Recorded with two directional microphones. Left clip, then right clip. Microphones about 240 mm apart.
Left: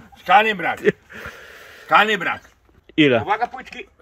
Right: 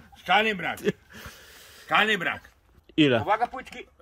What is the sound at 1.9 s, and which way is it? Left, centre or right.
Speech, centre.